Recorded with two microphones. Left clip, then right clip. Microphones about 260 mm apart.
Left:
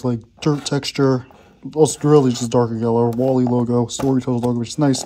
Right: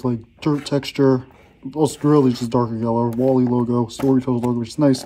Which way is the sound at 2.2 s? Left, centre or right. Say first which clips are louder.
Left 2 dB; left.